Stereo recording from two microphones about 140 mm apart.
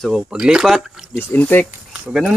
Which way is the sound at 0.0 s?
5° right (ahead or behind).